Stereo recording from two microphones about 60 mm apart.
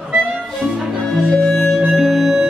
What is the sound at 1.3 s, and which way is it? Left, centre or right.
Music, centre.